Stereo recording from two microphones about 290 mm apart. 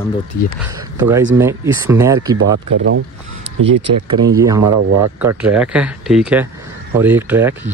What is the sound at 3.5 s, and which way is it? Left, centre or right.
Speech, right.